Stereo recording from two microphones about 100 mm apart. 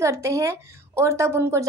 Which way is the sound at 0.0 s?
30° right (ahead or behind).